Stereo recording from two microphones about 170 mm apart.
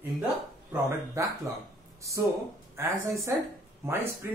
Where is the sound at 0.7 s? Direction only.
15° right (ahead or behind).